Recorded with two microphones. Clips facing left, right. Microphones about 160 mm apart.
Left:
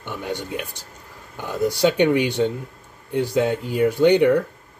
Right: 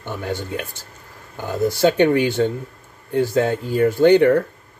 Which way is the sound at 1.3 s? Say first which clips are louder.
Right 3 dB; 40° right (ahead or behind).